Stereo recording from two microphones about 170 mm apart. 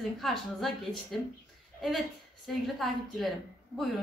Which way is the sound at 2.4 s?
Centre (ahead or behind).